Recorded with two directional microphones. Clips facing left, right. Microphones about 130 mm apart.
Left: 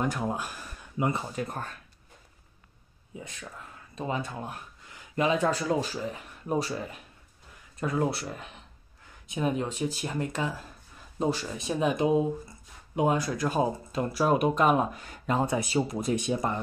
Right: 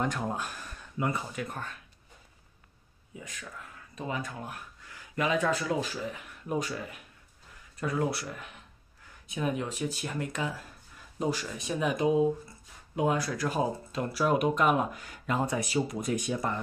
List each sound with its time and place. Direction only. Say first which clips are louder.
0.0 s speech: left 2 dB; 5° left (ahead or behind)
0.9 s speech: left 3 dB; 20° left (ahead or behind)
1.3 s speech: left 3 dB; 40° left (ahead or behind)
3.9 s speech: left 3 dB; 30° left (ahead or behind)